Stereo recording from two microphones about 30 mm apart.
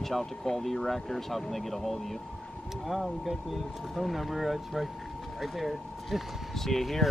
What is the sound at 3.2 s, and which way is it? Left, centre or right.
Speech, centre.